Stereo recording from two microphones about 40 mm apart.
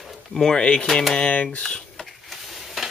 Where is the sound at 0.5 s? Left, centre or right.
Left.